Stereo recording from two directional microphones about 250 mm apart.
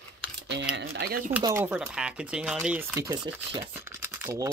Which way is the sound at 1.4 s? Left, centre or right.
Centre.